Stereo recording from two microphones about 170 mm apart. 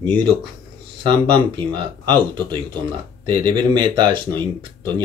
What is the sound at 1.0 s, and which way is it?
Speech, 30° right (ahead or behind).